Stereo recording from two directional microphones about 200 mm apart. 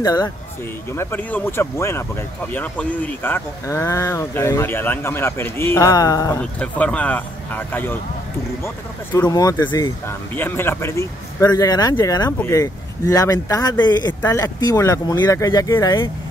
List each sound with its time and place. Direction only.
0.0 s speech: 20° left (ahead or behind)
9.3 s speech: 15° left (ahead or behind)